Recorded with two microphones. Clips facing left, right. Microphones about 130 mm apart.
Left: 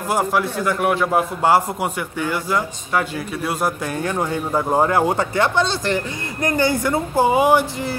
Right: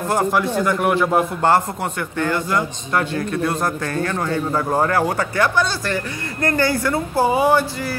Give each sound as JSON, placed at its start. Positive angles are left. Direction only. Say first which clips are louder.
{"t": 0.1, "sound": "a man's voice", "louder": "right 1 dB", "side_deg": 5}